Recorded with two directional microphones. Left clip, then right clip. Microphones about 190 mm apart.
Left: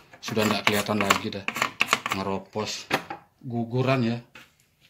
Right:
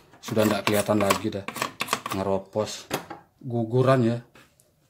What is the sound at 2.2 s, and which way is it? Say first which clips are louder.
Speech: right 4 dB; 30° right (ahead or behind).